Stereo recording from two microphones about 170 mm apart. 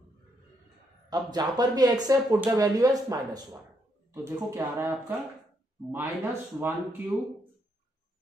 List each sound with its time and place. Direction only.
1.1 s speech: 25° right (ahead or behind)